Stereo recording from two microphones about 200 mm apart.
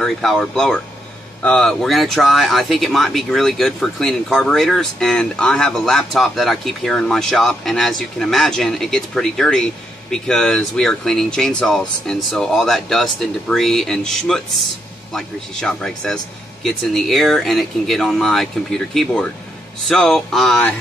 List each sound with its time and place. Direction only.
0.0 s speech: centre (ahead or behind)